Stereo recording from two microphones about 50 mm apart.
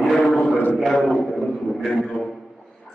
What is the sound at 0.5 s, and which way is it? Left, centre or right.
Speech, left.